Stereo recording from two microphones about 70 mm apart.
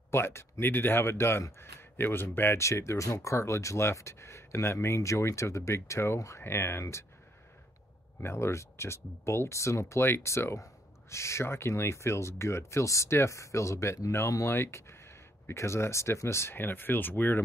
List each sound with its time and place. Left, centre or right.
0.1 s speech: left
6.4 s speech: left
8.2 s speech: left